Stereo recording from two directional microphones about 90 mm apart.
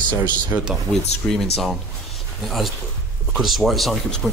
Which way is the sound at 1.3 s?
Centre (ahead or behind).